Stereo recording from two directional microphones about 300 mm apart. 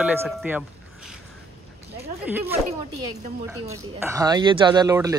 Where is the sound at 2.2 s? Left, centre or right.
Centre.